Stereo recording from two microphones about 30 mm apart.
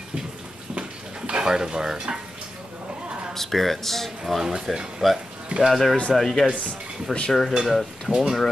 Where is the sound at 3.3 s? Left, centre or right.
Centre.